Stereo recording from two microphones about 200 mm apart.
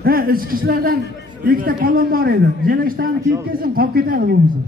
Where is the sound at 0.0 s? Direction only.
50° right (ahead or behind).